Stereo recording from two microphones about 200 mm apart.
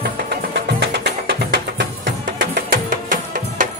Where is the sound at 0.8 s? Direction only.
55° right (ahead or behind).